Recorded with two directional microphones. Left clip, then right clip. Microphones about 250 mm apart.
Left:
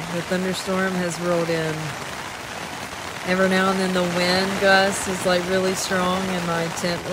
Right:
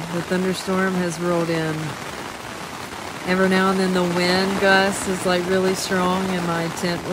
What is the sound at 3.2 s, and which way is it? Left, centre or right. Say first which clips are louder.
Speech: right 1 dB; centre.